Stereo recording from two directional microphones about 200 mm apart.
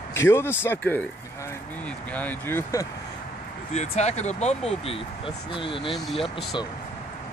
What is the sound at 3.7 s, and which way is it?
Speech, 35° left (ahead or behind).